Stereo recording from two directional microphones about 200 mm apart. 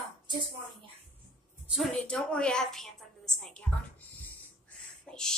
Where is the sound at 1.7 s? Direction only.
Centre (ahead or behind).